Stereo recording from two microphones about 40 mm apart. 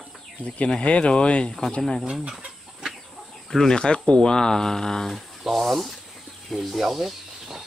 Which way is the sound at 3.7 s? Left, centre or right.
Left.